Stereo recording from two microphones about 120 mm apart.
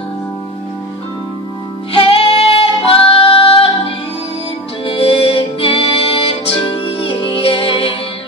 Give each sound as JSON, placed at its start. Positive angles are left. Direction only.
{"t": 1.9, "sound": "music", "side_deg": 50}